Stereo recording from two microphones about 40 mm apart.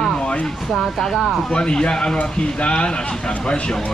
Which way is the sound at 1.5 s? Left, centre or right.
Left.